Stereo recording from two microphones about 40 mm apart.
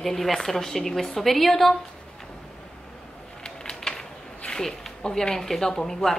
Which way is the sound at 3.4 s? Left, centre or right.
Centre.